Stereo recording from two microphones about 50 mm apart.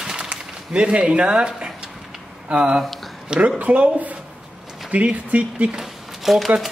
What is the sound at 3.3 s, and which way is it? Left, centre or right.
Speech, right.